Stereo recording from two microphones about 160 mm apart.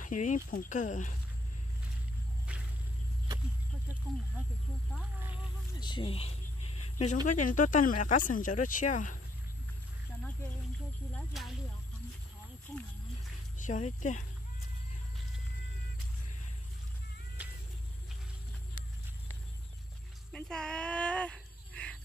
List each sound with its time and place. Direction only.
0.0 s speech: 55° left (ahead or behind)
5.8 s a sound: 30° left (ahead or behind)
7.2 s speech: 55° left (ahead or behind)
11.1 s speech: centre (ahead or behind)
13.6 s speech: 50° left (ahead or behind)
20.3 s a sound: 5° left (ahead or behind)